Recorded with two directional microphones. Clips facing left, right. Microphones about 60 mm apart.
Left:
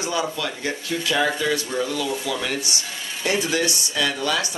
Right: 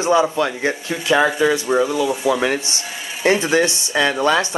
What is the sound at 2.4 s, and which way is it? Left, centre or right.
Speech, right.